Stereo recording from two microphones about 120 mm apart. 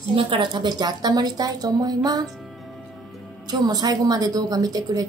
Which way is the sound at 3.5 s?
35° right (ahead or behind).